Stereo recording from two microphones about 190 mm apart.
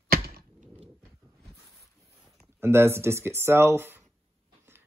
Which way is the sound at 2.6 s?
15° right (ahead or behind).